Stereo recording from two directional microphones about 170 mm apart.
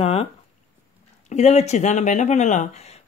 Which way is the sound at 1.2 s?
40° left (ahead or behind).